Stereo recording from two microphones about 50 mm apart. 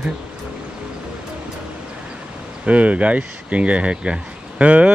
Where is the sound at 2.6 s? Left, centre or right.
Right.